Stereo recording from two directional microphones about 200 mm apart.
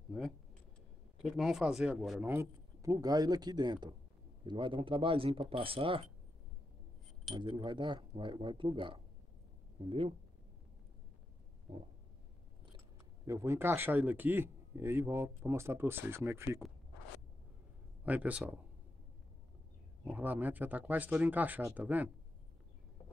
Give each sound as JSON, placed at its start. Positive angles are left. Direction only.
{"t": 1.2, "sound": "speech", "side_deg": 0}
{"t": 7.3, "sound": "speech", "side_deg": -25}
{"t": 13.3, "sound": "speech", "side_deg": -15}
{"t": 18.0, "sound": "speech", "side_deg": -5}
{"t": 20.1, "sound": "speech", "side_deg": -10}